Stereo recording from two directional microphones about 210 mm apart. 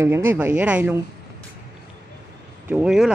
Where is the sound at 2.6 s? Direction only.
5° right (ahead or behind).